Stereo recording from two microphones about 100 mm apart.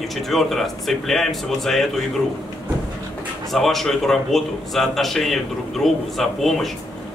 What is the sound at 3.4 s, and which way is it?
A man's voice, centre (ahead or behind).